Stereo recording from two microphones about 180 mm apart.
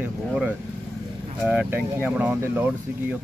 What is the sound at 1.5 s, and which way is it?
Speech, 10° right (ahead or behind).